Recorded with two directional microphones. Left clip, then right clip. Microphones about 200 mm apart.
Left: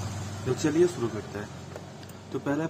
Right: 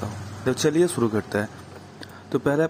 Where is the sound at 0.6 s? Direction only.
35° right (ahead or behind).